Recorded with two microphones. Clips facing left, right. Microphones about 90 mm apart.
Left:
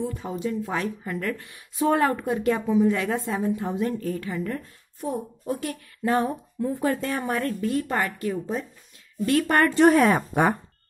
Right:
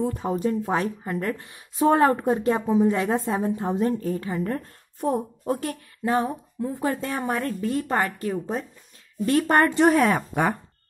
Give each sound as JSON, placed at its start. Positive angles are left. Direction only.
{"t": 0.0, "sound": "speech", "side_deg": -40}
{"t": 5.0, "sound": "a woman's voice", "side_deg": -50}
{"t": 6.0, "sound": "speech", "side_deg": -15}
{"t": 9.8, "sound": "speech", "side_deg": -5}